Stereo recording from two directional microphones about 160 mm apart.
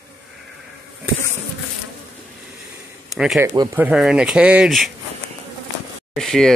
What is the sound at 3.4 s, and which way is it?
Speech, 15° right (ahead or behind).